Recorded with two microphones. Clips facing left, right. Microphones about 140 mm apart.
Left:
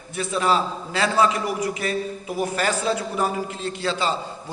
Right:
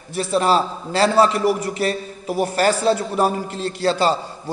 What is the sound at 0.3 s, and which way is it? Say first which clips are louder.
A man's voice: right 4 dB; 35° right (ahead or behind).